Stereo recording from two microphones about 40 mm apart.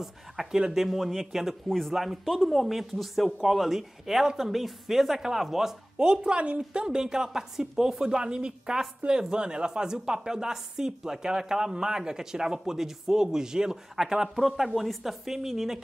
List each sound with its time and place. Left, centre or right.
0.0 s a woman's voice: centre
0.8 s a man's voice: centre
2.6 s a man's voice: centre
5.9 s a woman's voice: right
14.8 s a man's voice: centre